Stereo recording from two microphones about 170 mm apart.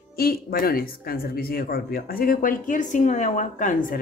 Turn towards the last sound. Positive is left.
turn(degrees=50)  # may be behind; listen again after turning